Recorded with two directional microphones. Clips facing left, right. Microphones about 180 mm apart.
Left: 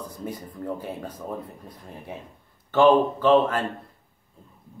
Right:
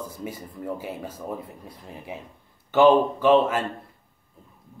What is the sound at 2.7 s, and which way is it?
Speech, 10° right (ahead or behind).